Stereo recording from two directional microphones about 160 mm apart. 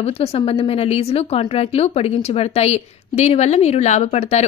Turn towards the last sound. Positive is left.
turn(degrees=40)  # may be behind; listen again after turning